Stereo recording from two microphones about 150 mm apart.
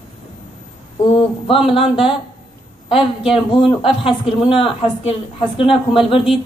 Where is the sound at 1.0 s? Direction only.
35° left (ahead or behind).